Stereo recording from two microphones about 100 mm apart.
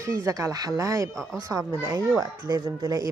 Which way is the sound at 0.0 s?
30° right (ahead or behind).